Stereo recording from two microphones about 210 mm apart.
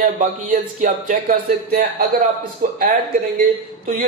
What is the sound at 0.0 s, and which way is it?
Speech, 40° right (ahead or behind).